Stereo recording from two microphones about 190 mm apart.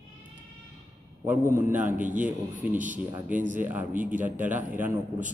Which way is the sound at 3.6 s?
10° right (ahead or behind).